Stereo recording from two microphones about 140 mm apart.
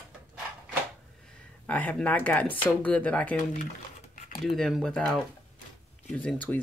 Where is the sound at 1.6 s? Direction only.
10° left (ahead or behind).